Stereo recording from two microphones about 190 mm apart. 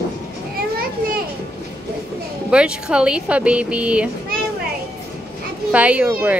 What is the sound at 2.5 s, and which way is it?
Speech, 5° right (ahead or behind).